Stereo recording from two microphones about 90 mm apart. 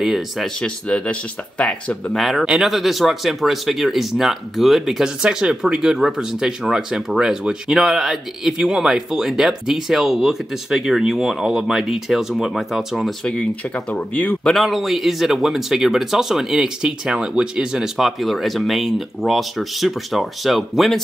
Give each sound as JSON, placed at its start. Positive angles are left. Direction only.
{"t": 0.0, "sound": "speech", "side_deg": 0}
{"t": 0.6, "sound": "speech", "side_deg": 10}
{"t": 2.1, "sound": "speech", "side_deg": 0}
{"t": 13.7, "sound": "speech", "side_deg": 15}
{"t": 14.4, "sound": "speech", "side_deg": 0}